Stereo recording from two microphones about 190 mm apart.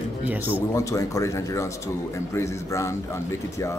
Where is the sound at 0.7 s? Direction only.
15° left (ahead or behind).